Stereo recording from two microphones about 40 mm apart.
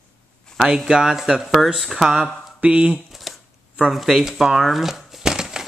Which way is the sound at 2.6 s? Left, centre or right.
Right.